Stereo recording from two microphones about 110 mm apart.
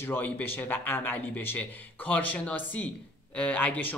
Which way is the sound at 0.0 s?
20° left (ahead or behind).